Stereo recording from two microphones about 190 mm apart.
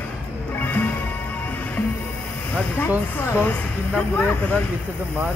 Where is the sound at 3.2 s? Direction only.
10° left (ahead or behind).